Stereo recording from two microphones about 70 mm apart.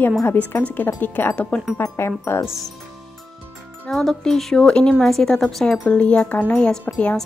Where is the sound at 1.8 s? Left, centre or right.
Left.